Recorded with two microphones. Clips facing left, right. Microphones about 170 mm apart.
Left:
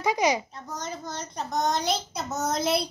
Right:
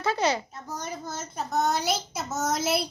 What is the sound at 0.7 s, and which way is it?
A child's voice, 10° right (ahead or behind).